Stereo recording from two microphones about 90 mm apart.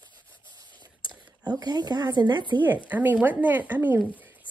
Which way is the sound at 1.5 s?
50° right (ahead or behind).